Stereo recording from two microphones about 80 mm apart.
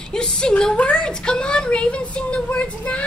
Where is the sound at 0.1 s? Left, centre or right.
Centre.